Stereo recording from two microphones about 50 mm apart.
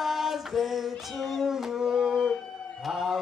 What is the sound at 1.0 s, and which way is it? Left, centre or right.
Howl, centre.